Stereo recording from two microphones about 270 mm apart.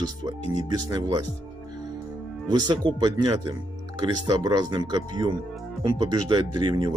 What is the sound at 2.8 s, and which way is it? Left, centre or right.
Speech, centre.